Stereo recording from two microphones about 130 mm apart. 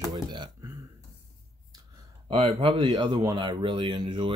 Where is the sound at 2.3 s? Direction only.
45° right (ahead or behind).